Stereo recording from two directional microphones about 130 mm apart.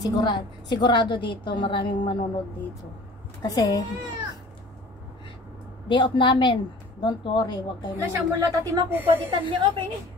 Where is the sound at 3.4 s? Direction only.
30° left (ahead or behind).